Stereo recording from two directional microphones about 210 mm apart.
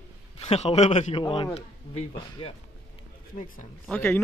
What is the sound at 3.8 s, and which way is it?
Speech, 10° left (ahead or behind).